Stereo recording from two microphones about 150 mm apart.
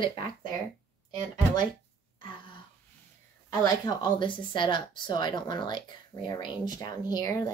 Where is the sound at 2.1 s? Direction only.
35° left (ahead or behind).